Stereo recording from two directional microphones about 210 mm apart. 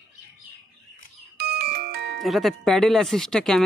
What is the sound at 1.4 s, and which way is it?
Music, 50° right (ahead or behind).